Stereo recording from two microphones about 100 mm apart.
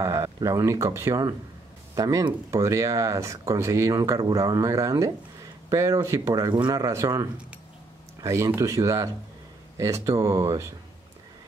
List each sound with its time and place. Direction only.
0.0 s speech: 30° right (ahead or behind)
6.7 s speech: 30° right (ahead or behind)